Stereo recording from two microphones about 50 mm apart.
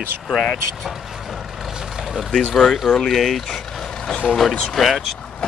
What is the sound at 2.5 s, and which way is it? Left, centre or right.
Speech, centre.